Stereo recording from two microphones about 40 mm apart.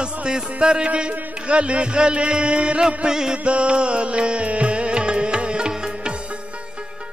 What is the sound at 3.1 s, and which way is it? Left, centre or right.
Music, centre.